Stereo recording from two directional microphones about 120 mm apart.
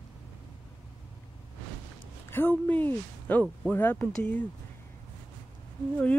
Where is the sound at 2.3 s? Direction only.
15° left (ahead or behind).